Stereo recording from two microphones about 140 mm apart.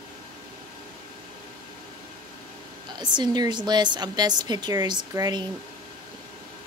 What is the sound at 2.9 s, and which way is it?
Speech, 30° right (ahead or behind).